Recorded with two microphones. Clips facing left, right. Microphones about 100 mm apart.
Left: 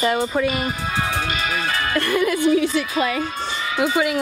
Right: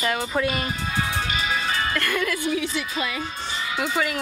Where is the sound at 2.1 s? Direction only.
25° left (ahead or behind).